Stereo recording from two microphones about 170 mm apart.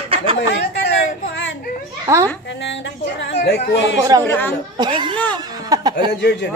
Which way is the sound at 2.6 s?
90° left.